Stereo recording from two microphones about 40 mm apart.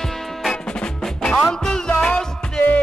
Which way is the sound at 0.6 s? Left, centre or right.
Left.